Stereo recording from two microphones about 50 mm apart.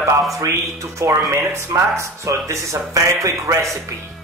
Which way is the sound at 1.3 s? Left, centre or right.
Right.